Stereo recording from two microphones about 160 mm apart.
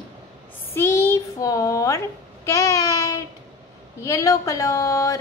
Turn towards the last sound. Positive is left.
turn(degrees=20)  # may be behind; listen again after turning